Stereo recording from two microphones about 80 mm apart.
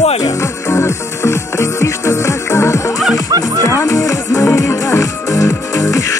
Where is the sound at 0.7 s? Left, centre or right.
Left.